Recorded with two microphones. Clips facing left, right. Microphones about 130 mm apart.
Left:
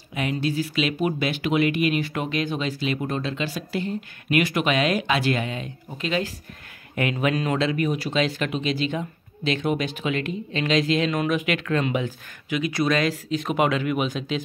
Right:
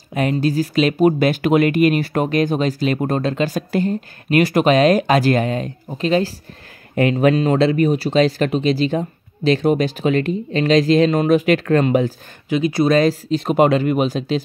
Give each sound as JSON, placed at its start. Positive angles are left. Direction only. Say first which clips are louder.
{"t": 0.1, "sound": "speech", "louder": "right 7 dB", "side_deg": -45}